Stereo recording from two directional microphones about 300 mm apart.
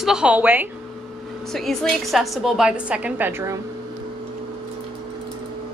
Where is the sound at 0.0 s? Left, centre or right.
Centre.